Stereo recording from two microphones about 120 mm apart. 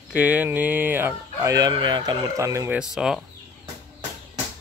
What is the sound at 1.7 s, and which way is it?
Speech, 40° right (ahead or behind).